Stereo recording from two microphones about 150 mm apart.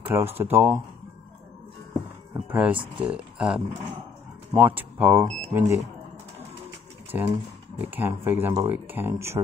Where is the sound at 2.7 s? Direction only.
35° right (ahead or behind).